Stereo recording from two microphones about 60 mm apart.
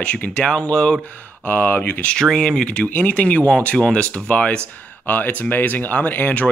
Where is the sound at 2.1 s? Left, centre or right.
Centre.